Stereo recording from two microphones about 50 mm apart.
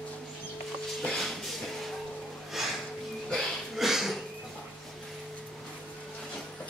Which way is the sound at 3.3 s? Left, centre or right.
Centre.